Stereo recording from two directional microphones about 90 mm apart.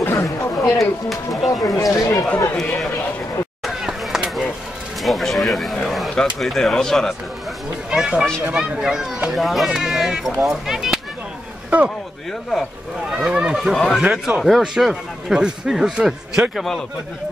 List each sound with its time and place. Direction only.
0.0 s speech: 30° left (ahead or behind)
0.7 s speech: centre (ahead or behind)
1.6 s speech: 40° left (ahead or behind)
2.0 s speech: 30° left (ahead or behind)
2.5 s speech: 5° left (ahead or behind)
3.6 s a sound: 5° right (ahead or behind)
5.9 s speech: centre (ahead or behind)
7.9 s speech: 10° right (ahead or behind)
13.2 s speech: 10° right (ahead or behind)